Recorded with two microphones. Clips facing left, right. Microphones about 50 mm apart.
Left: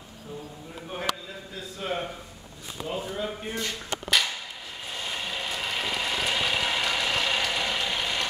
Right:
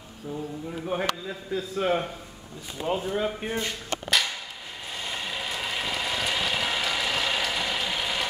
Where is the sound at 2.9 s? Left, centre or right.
Right.